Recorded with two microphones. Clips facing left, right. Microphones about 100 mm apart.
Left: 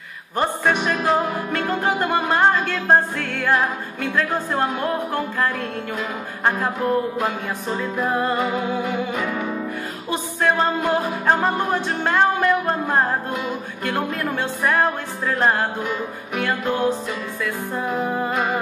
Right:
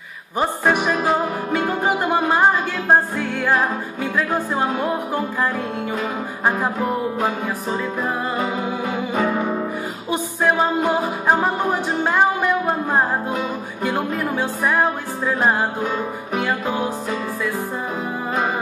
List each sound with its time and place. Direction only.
0.4 s music: 10° right (ahead or behind)
7.7 s music: 5° right (ahead or behind)
9.1 s music: 30° right (ahead or behind)
10.1 s music: 10° right (ahead or behind)